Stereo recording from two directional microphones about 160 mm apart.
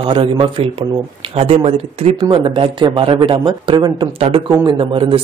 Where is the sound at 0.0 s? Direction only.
30° right (ahead or behind).